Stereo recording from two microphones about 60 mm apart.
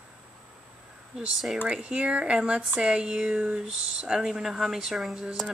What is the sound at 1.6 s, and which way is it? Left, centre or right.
Speech, centre.